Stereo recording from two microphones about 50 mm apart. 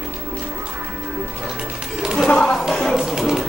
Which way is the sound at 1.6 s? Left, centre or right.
Centre.